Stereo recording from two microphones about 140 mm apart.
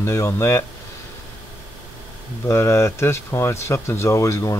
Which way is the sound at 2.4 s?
20° left (ahead or behind).